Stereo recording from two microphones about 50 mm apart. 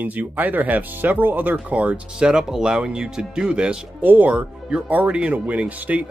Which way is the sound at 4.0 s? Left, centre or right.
Right.